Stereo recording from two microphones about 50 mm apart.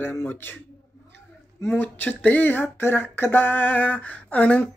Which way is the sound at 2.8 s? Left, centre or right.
Left.